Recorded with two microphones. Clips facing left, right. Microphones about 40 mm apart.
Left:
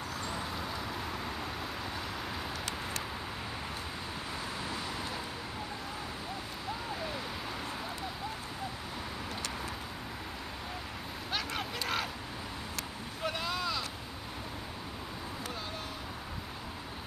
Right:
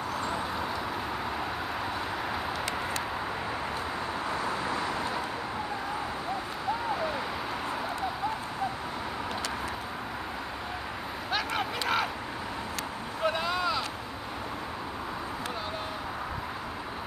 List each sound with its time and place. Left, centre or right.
0.2 s vehicle: right
4.3 s vehicle: right
11.3 s a sound: centre
13.2 s vehicle: centre